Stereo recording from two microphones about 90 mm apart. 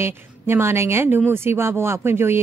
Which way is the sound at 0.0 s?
30° right (ahead or behind).